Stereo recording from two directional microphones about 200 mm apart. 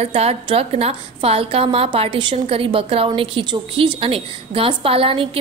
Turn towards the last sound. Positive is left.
turn(degrees=-25)  # may be behind; listen again after turning